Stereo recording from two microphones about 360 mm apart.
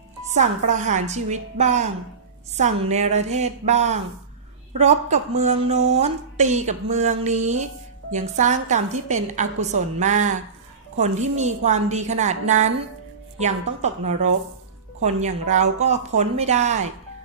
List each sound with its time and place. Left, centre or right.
0.3 s a woman's voice: centre
15.0 s a woman's voice: centre